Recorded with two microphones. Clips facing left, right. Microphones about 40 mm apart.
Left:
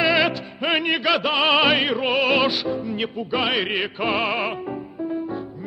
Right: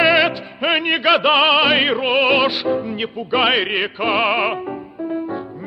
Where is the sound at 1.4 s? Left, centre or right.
Centre.